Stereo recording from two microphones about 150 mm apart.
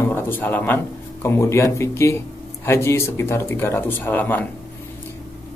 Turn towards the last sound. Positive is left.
turn(degrees=10)  # may be behind; listen again after turning